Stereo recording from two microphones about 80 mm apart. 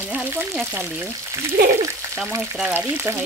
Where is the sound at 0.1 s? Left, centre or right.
Right.